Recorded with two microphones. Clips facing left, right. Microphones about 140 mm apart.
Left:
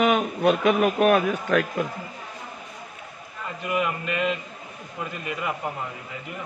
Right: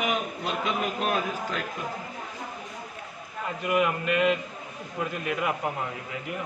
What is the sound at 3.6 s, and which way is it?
A man's voice, 5° right (ahead or behind).